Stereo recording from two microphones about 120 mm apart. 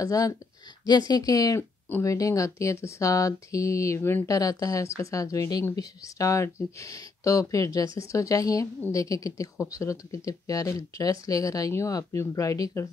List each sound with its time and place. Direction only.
0.0 s speech: 30° left (ahead or behind)